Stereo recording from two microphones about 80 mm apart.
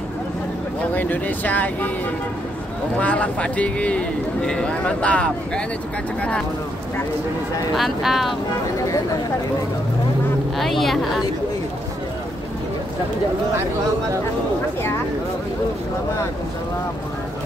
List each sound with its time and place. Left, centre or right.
0.9 s speech: left
3.0 s speech: centre
7.7 s speech: centre
10.6 s speech: centre